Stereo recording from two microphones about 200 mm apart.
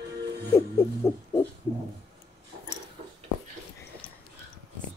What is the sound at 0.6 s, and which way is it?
Speech, 15° left (ahead or behind).